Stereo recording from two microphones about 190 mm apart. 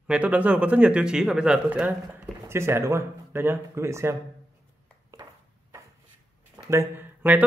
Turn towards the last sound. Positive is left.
turn(degrees=-10)  # may be behind; listen again after turning